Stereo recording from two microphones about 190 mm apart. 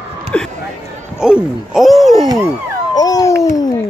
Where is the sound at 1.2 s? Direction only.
5° right (ahead or behind).